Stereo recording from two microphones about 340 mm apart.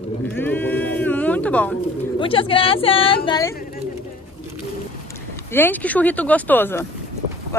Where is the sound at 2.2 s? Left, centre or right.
Centre.